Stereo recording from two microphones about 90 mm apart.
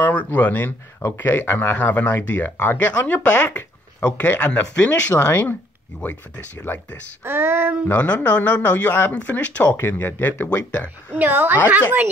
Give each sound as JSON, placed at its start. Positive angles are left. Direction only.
{"t": 0.0, "sound": "speech", "side_deg": 20}
{"t": 7.2, "sound": "a sound", "side_deg": -25}
{"t": 7.9, "sound": "speech", "side_deg": 15}
{"t": 11.1, "sound": "a woman's voice", "side_deg": -20}